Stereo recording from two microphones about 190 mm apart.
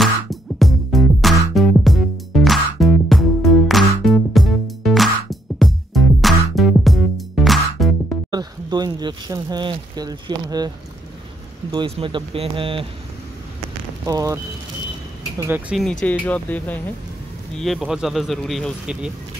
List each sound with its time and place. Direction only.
0.0 s music: centre (ahead or behind)
8.3 s speech: 20° right (ahead or behind)
11.7 s speech: 25° right (ahead or behind)
14.0 s speech: 15° right (ahead or behind)
16.0 s speech: 10° left (ahead or behind)